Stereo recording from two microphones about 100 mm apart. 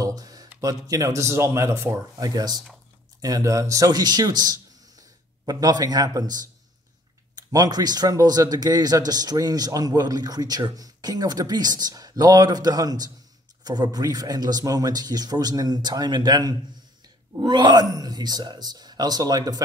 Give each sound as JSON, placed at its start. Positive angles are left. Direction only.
{"t": 0.0, "sound": "a sound", "side_deg": -40}
{"t": 0.6, "sound": "speech", "side_deg": -35}
{"t": 2.1, "sound": "a man's voice", "side_deg": -40}